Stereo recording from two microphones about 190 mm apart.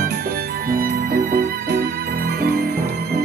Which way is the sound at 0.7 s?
50° right (ahead or behind).